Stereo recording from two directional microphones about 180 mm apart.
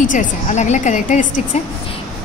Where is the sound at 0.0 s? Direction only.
45° left (ahead or behind).